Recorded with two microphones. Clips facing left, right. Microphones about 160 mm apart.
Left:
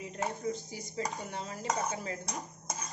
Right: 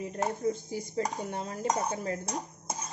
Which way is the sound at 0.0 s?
50° right (ahead or behind).